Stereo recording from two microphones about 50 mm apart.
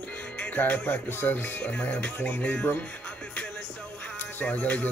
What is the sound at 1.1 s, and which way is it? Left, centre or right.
Speech, left.